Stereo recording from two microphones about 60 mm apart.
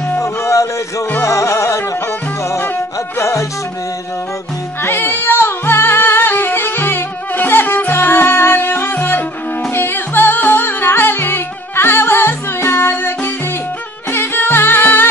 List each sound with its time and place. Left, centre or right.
0.2 s music: left
3.2 s music: left
4.8 s music: left